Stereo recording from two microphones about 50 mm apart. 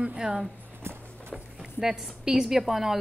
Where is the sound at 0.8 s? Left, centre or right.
Right.